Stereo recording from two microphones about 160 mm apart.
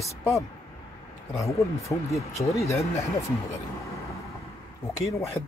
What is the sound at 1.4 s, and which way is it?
Speech, 20° left (ahead or behind).